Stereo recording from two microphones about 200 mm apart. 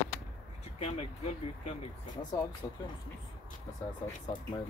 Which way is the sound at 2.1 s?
15° left (ahead or behind).